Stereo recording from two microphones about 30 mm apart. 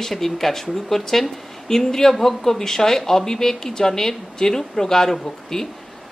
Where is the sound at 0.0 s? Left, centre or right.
Centre.